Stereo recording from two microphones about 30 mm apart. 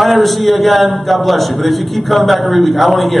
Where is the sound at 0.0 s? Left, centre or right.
Centre.